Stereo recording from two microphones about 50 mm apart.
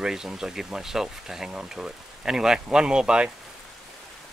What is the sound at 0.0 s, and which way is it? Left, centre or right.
Speech, centre.